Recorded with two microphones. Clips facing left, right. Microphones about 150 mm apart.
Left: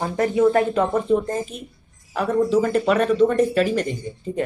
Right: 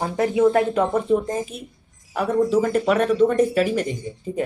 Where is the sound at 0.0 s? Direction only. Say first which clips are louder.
Even; 10° right (ahead or behind).